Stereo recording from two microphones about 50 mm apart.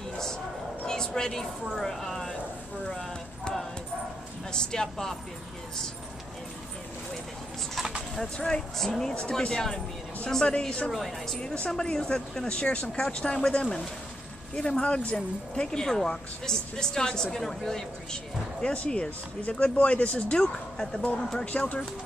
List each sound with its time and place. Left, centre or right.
0.8 s speech: centre
4.5 s speech: centre
8.4 s speech: centre
8.7 s speech: centre
9.1 s speech: centre
10.9 s a woman's voice: centre
11.3 s speech: centre
21.5 s speech: left